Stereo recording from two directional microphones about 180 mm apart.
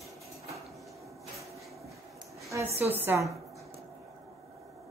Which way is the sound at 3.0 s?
15° right (ahead or behind).